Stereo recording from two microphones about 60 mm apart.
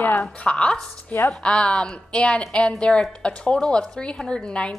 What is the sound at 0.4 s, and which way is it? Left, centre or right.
A woman's voice, centre.